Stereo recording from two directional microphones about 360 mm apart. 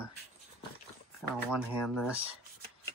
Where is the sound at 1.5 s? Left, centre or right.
Centre.